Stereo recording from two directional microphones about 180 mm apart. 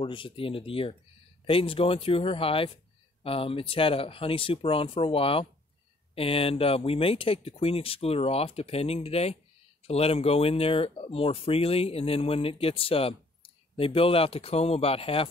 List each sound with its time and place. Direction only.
0.0 s speech: 30° left (ahead or behind)